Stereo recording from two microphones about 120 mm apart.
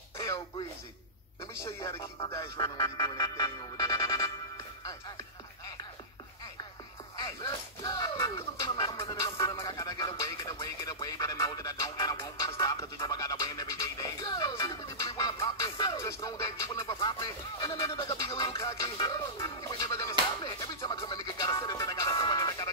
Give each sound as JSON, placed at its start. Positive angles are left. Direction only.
{"t": 0.2, "sound": "throat clearing", "side_deg": 35}
{"t": 1.8, "sound": "music", "side_deg": 25}
{"t": 7.2, "sound": "music", "side_deg": 30}
{"t": 19.0, "sound": "music", "side_deg": 40}